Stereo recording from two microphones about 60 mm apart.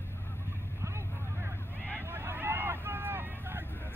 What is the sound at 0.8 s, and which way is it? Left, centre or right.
Vehicle, right.